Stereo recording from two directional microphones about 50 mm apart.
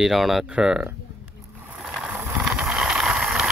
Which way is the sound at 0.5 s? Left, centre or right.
Right.